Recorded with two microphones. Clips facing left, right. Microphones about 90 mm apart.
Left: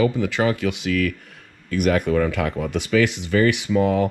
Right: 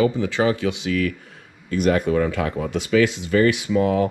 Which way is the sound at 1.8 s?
30° right (ahead or behind).